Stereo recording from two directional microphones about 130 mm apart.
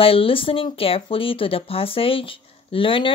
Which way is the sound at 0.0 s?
45° left (ahead or behind).